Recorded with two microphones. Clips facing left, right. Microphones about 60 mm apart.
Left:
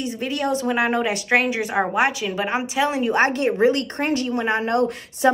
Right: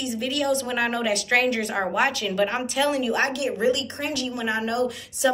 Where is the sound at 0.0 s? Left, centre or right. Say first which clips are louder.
Left 1 dB; left.